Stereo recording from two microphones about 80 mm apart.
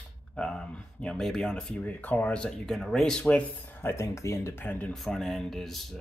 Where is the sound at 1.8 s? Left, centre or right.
Left.